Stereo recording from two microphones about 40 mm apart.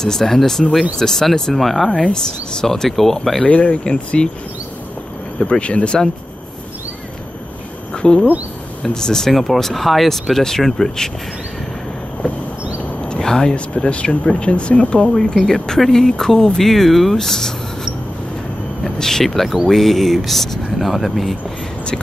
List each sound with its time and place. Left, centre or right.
0.0 s speech: centre
3.4 s speech: left
5.4 s speech: left
7.9 s a sound: left
8.8 s speech: centre
13.2 s speech: centre
15.2 s speech: centre